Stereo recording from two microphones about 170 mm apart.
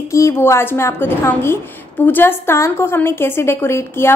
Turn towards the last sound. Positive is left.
turn(degrees=15)  # may be behind; listen again after turning